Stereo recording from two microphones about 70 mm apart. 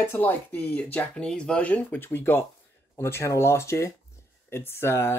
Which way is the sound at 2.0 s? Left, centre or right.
Left.